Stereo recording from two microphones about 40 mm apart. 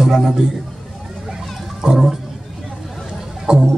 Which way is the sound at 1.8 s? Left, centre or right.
Centre.